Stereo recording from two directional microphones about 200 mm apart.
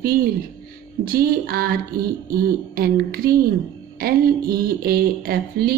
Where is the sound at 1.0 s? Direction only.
50° right (ahead or behind).